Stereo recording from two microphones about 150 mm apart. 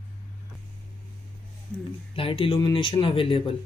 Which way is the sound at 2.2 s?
35° left (ahead or behind).